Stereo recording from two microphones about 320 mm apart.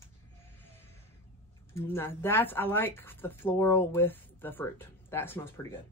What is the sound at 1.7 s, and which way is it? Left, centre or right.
Speech, centre.